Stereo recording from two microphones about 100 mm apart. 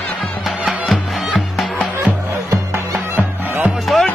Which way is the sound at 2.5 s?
25° right (ahead or behind).